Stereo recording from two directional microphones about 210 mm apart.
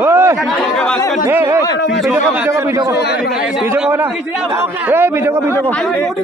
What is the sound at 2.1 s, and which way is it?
A man's voice, 10° right (ahead or behind).